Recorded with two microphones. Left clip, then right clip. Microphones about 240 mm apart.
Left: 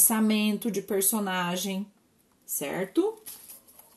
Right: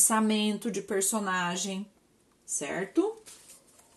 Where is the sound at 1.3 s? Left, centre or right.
Right.